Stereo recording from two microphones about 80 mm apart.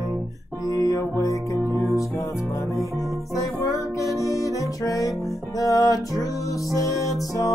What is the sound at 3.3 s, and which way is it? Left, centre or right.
Music, left.